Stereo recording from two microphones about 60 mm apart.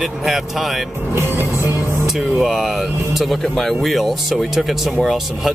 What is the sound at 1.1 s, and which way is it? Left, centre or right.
Music, right.